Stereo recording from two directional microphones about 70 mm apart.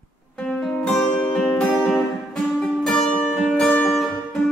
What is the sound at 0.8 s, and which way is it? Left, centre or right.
Music, centre.